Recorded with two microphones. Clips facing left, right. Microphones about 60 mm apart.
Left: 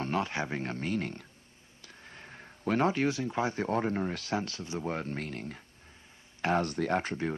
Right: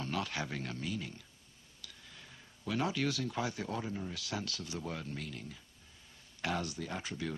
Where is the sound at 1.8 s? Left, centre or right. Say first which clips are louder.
Left 5 dB; left.